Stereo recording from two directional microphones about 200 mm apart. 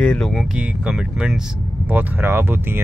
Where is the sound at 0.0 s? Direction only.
5° left (ahead or behind).